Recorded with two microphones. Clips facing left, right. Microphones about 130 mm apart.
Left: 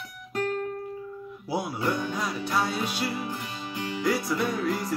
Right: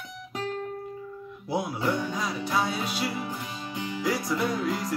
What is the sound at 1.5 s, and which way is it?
Music, centre (ahead or behind).